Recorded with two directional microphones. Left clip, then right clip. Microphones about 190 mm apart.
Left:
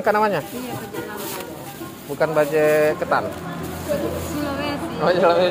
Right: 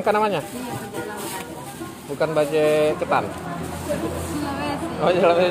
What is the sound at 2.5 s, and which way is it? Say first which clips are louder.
Speech: left 1 dB; 5° right (ahead or behind).